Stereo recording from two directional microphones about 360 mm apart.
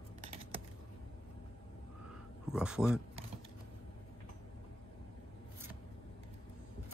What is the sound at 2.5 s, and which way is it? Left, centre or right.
Speech, centre.